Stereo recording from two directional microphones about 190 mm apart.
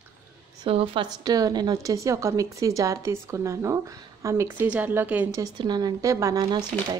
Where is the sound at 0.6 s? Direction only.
30° right (ahead or behind).